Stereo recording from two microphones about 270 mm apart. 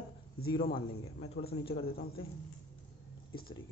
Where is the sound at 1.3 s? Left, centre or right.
Left.